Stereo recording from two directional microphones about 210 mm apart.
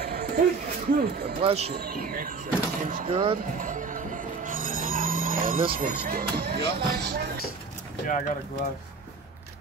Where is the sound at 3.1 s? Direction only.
25° right (ahead or behind).